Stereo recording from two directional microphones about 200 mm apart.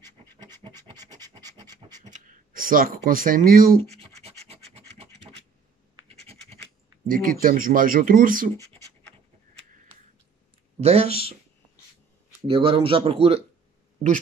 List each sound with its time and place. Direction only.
0.0 s scratch: 20° right (ahead or behind)
2.0 s speech: 40° right (ahead or behind)
4.0 s scratch: 30° right (ahead or behind)
7.1 s speech: 45° right (ahead or behind)
10.8 s speech: 30° right (ahead or behind)
12.4 s speech: 25° right (ahead or behind)